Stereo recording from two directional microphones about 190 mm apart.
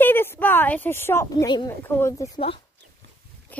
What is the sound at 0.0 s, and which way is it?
A woman's voice, 10° left (ahead or behind).